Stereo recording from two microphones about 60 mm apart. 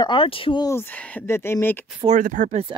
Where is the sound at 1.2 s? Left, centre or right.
Left.